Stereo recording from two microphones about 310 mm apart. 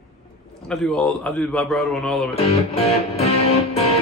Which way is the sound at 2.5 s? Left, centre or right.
Centre.